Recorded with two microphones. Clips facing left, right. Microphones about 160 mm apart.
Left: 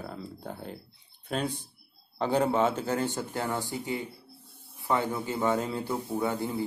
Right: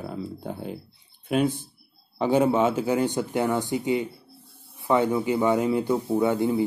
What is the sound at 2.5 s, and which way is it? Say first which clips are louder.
A man's voice: right 5 dB; 10° right (ahead or behind).